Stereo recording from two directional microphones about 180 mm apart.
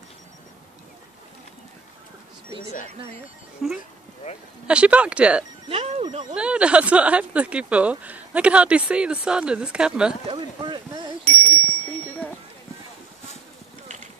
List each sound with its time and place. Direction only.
3.6 s speech: centre (ahead or behind)
5.7 s music: 35° right (ahead or behind)
6.3 s speech: 5° right (ahead or behind)
10.2 s a sound: 25° right (ahead or behind)